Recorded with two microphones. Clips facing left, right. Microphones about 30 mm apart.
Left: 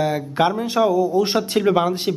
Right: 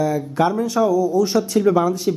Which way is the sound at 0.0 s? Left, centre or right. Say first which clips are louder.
Even; left.